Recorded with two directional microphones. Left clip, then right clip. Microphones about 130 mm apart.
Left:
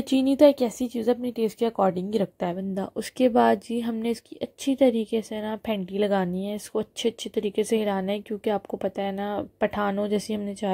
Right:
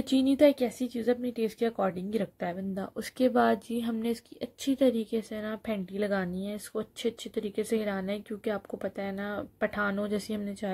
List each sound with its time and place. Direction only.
0.1 s speech: 25° left (ahead or behind)